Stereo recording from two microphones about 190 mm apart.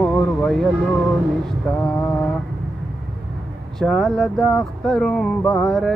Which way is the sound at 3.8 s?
Centre (ahead or behind).